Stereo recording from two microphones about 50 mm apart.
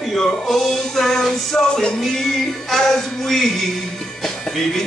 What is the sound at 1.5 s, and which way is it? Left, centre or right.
Music, centre.